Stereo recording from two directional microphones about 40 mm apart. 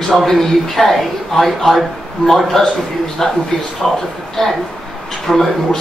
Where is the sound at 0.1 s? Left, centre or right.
Centre.